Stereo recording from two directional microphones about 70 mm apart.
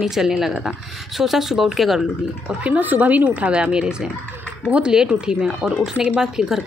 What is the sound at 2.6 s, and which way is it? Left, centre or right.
A woman's voice, right.